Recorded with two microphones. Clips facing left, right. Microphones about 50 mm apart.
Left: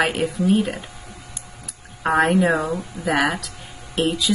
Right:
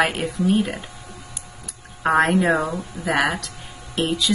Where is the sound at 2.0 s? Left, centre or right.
Centre.